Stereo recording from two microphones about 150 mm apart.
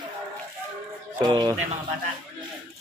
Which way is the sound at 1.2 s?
25° right (ahead or behind).